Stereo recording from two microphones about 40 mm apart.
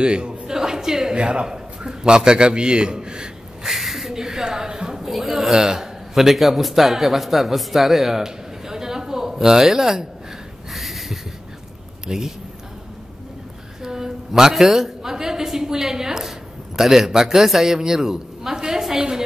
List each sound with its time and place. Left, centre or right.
0.0 s a man's voice: right
0.5 s a woman's voice: centre
1.1 s a man's voice: right
3.6 s a sound: centre
5.1 s a man's voice: centre
10.7 s a sound: centre
12.1 s speech: centre
13.8 s a sound: centre
14.5 s a woman's voice: centre